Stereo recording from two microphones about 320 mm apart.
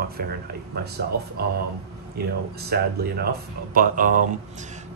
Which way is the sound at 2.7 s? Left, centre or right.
Right.